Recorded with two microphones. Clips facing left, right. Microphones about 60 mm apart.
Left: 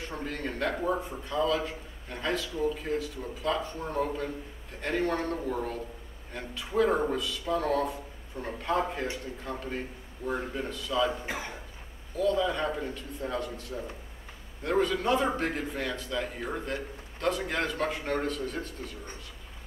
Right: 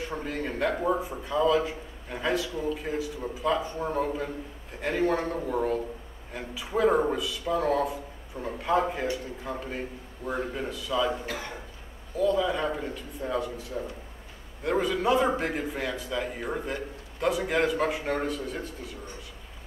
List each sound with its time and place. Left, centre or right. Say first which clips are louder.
0.0 s a man's voice: right 3 dB; centre
11.2 s speech: right 1 dB; centre
12.2 s a man's voice: right 2 dB; centre